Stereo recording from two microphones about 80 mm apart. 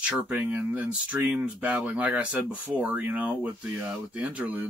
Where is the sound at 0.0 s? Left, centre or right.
Centre.